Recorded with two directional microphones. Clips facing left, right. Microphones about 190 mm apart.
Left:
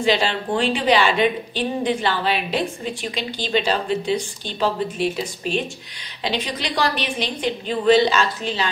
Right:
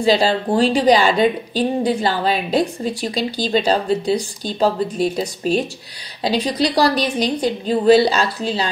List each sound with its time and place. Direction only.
0.0 s a woman's voice: 35° right (ahead or behind)